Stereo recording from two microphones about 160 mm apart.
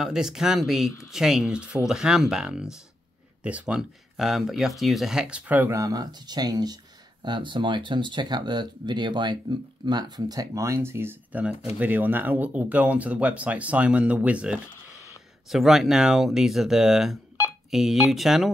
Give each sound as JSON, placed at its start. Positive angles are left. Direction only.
{"t": 0.0, "sound": "speech", "side_deg": -5}